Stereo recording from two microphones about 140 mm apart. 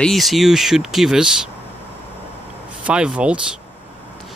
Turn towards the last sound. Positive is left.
turn(degrees=-10)  # may be behind; listen again after turning